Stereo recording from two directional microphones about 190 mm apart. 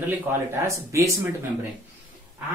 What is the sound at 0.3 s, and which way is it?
Speech, 15° right (ahead or behind).